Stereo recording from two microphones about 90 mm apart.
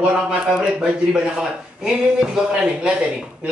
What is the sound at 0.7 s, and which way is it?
Speech, 10° right (ahead or behind).